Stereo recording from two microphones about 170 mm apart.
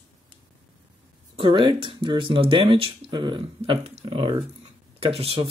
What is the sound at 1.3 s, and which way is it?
Speech, 30° right (ahead or behind).